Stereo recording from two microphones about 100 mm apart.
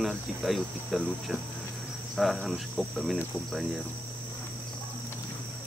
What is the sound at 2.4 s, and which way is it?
Speech, centre (ahead or behind).